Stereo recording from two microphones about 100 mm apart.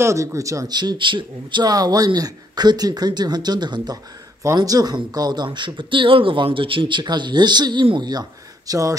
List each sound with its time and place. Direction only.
0.0 s speech: 30° right (ahead or behind)